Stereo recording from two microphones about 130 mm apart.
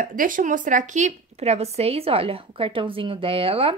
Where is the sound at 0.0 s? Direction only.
90° right.